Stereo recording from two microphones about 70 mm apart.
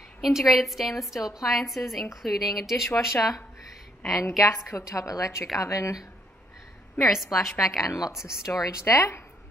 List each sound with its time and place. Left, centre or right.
0.2 s a woman's voice: centre
4.4 s a woman's voice: left
7.0 s a woman's voice: centre
8.5 s a woman's voice: left